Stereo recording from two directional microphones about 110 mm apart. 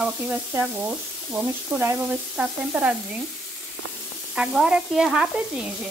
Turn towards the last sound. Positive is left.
turn(degrees=-5)  # may be behind; listen again after turning